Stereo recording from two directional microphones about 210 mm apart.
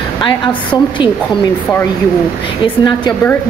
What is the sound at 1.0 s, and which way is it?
Speech, 25° left (ahead or behind).